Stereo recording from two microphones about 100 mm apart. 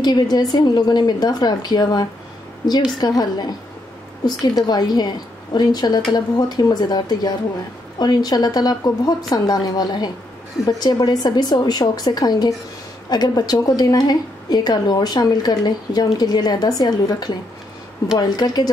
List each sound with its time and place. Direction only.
0.0 s a woman's voice: 45° left (ahead or behind)
4.6 s a woman's voice: 45° left (ahead or behind)